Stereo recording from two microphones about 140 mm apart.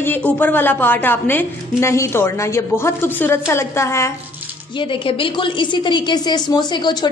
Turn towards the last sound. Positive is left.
turn(degrees=30)  # may be behind; listen again after turning